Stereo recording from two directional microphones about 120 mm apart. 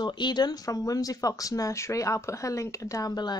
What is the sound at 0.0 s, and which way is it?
Speech, 40° left (ahead or behind).